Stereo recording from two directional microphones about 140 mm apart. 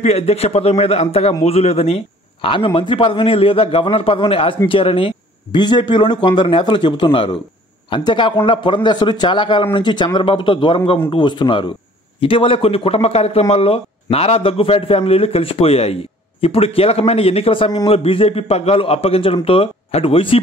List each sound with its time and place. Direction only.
0.0 s a man's voice: 50° left (ahead or behind)